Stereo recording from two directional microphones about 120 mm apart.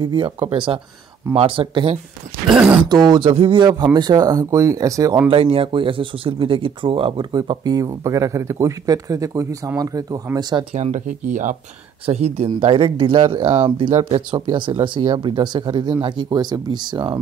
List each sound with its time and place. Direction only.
0.0 s speech: 40° right (ahead or behind)
2.4 s speech: 5° right (ahead or behind)
2.8 s speech: 35° right (ahead or behind)
5.3 s speech: 50° right (ahead or behind); by 10.6 s 30° right (ahead or behind)
10.7 s speech: 80° right
12.1 s speech: 60° right (ahead or behind)
12.5 s speech: 45° right (ahead or behind)